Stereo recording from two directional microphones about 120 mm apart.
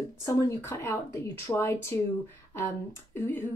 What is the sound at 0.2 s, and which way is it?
A woman's voice, 25° left (ahead or behind).